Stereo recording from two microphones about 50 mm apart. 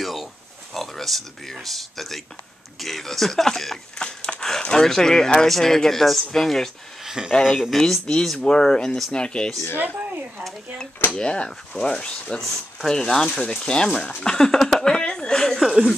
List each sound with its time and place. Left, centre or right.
0.0 s a sound: centre
0.7 s speech: centre
4.2 s a sound: centre
4.5 s speech: centre
7.0 s a sound: centre
7.4 s speech: centre
7.7 s speech: centre
8.4 s speech: centre
11.1 s speech: centre